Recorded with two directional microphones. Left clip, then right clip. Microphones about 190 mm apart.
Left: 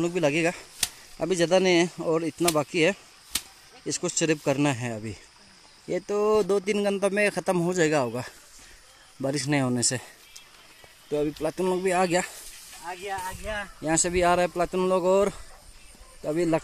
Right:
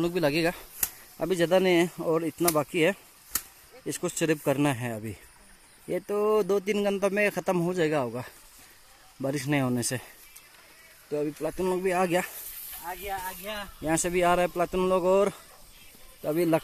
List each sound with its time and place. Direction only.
0.0 s speech: centre (ahead or behind)
7.7 s speech: 10° left (ahead or behind)
11.1 s speech: 15° left (ahead or behind)
12.9 s speech: 20° right (ahead or behind)
13.2 s speech: 50° right (ahead or behind)
13.8 s speech: centre (ahead or behind)